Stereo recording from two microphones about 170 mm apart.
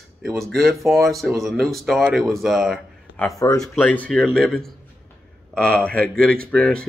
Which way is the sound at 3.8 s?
10° left (ahead or behind).